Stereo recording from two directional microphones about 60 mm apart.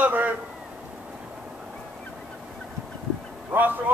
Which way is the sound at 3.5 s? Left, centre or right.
Right.